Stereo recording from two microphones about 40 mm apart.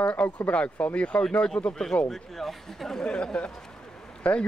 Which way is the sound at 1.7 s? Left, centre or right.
Centre.